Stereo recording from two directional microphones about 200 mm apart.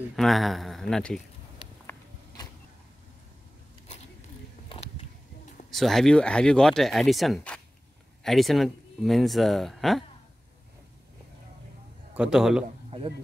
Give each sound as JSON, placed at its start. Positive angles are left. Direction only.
{"t": 0.1, "sound": "speech", "side_deg": 0}
{"t": 1.6, "sound": "a sound", "side_deg": 30}
{"t": 5.7, "sound": "speech", "side_deg": 0}
{"t": 12.1, "sound": "a man's voice", "side_deg": -5}
{"t": 12.9, "sound": "speech", "side_deg": -30}